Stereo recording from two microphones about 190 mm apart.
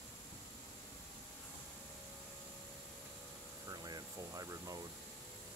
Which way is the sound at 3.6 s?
20° right (ahead or behind).